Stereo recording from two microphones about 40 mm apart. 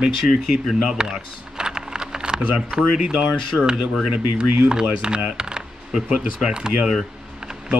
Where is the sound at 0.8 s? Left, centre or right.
Right.